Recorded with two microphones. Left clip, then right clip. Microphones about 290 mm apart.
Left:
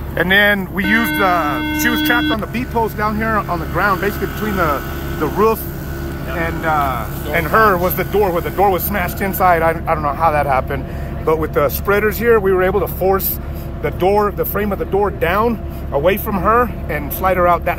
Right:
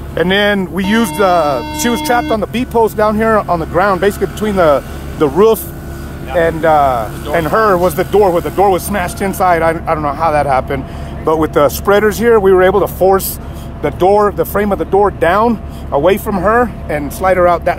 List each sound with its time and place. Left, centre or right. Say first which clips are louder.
0.1 s speech: right 1 dB; centre